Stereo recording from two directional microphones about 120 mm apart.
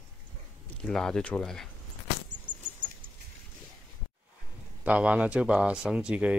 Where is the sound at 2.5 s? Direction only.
90° right.